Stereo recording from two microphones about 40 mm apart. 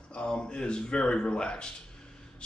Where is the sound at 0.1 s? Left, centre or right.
Left.